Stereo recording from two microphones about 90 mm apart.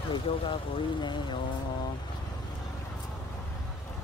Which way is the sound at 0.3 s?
90° left.